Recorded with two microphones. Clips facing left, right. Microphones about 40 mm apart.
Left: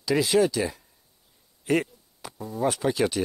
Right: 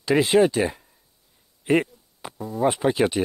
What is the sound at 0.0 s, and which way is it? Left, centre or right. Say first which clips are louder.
Speech: right 4 dB; right.